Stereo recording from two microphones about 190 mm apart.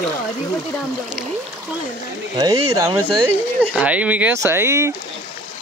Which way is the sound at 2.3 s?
20° right (ahead or behind).